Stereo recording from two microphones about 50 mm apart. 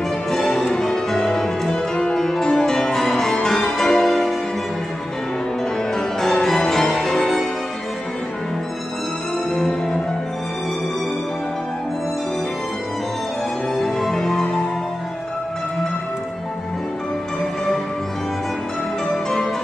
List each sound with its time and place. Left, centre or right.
0.3 s music: centre
6.4 s music: centre
9.5 s music: centre
13.7 s music: centre